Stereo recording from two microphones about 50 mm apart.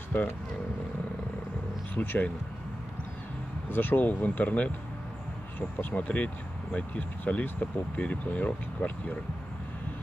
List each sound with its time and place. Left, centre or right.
2.0 s speech: left
3.7 s speech: left